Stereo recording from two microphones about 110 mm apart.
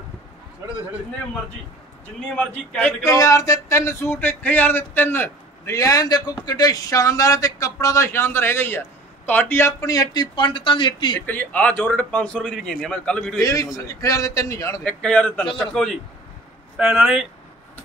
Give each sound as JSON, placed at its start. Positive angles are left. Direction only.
{"t": 2.3, "sound": "a man's voice", "side_deg": 10}
{"t": 3.0, "sound": "a sound", "side_deg": 30}
{"t": 5.8, "sound": "speech", "side_deg": 35}
{"t": 11.1, "sound": "a man's voice", "side_deg": 15}
{"t": 13.4, "sound": "speech", "side_deg": 35}
{"t": 14.8, "sound": "a man's voice", "side_deg": 10}